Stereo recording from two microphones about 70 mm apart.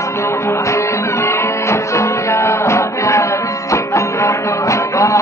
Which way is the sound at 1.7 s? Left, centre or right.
Left.